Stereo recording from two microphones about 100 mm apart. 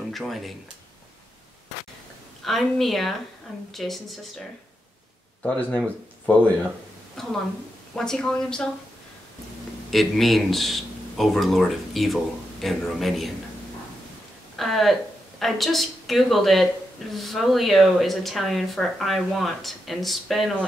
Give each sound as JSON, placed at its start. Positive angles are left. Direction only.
{"t": 0.1, "sound": "speech", "side_deg": 0}
{"t": 2.4, "sound": "speech", "side_deg": 0}
{"t": 5.4, "sound": "speech", "side_deg": 10}
{"t": 7.2, "sound": "speech", "side_deg": 5}
{"t": 9.8, "sound": "speech", "side_deg": 0}
{"t": 14.6, "sound": "speech", "side_deg": 0}